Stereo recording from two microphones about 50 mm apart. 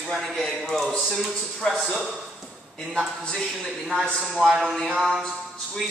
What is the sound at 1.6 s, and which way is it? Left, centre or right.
Speech, centre.